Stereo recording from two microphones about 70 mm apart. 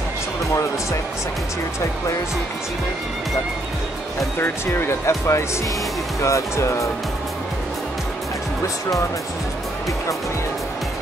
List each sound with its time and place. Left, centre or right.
4.4 s speech: left